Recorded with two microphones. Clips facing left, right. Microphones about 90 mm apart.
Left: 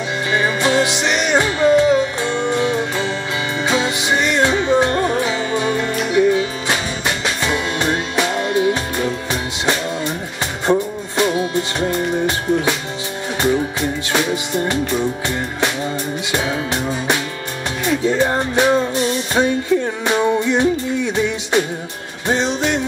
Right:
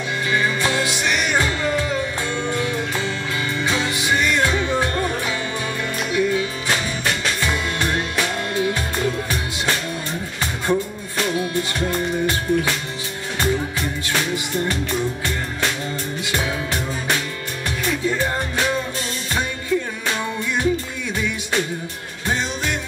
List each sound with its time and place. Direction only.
0.3 s music: 20° left (ahead or behind)
10.7 s music: 20° left (ahead or behind)
16.3 s music: 20° left (ahead or behind)
20.1 s music: 20° left (ahead or behind)